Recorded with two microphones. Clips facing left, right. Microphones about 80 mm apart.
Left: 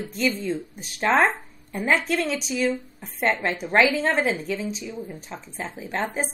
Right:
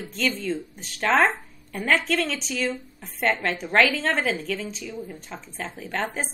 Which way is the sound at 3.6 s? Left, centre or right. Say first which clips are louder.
Left 1 dB; centre.